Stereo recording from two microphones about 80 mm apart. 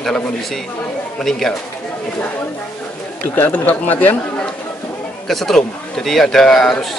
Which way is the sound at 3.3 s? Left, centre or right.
Left.